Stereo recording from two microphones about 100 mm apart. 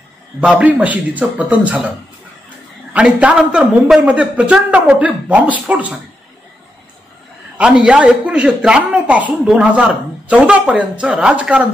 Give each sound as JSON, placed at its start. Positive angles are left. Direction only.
{"t": 0.4, "sound": "a man's voice", "side_deg": -10}
{"t": 2.9, "sound": "a man's voice", "side_deg": -10}
{"t": 7.5, "sound": "a man's voice", "side_deg": -10}